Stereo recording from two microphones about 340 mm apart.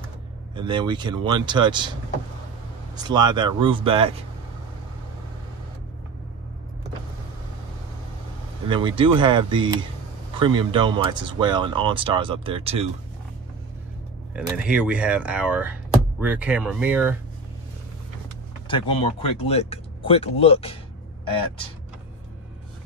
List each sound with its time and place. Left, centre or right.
0.6 s speech: centre
3.0 s speech: centre
8.6 s speech: centre
14.3 s speech: centre
18.7 s speech: centre